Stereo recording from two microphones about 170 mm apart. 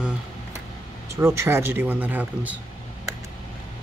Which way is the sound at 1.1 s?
15° right (ahead or behind).